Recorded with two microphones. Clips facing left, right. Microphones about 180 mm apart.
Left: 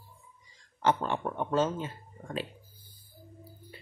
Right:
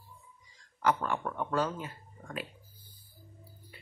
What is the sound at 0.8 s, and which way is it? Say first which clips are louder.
Speech: left 2 dB; 25° left (ahead or behind).